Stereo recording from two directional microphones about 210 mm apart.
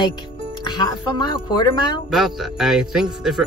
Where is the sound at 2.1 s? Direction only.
Centre (ahead or behind).